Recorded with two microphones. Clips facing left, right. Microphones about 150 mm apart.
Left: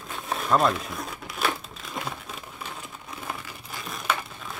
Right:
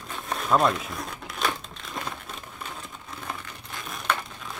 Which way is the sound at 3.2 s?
5° left (ahead or behind).